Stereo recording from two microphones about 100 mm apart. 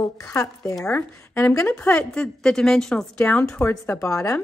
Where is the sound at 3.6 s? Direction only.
20° left (ahead or behind).